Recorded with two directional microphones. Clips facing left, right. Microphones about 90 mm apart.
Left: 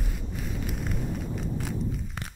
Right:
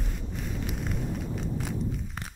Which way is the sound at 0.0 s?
Centre (ahead or behind).